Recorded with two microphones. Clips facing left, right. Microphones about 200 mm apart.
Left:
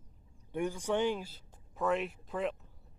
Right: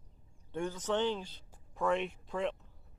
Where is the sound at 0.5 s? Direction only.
10° left (ahead or behind).